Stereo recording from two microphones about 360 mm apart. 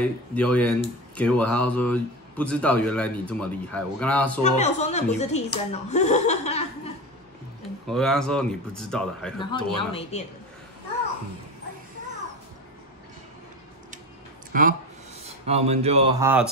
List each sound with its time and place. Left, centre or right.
0.0 s speech: centre
4.4 s speech: centre
7.8 s speech: centre
9.4 s a woman's voice: centre
14.5 s speech: right; by 16.4 s centre